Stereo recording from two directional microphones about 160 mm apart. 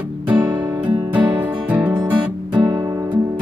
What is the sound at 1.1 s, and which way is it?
Music, 10° right (ahead or behind).